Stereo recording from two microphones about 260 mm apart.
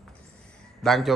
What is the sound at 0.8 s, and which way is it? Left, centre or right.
Speech, centre.